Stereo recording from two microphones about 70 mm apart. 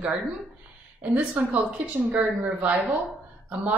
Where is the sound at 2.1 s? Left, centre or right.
Centre.